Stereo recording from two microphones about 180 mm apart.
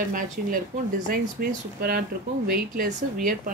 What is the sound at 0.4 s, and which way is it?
Speech, 50° right (ahead or behind).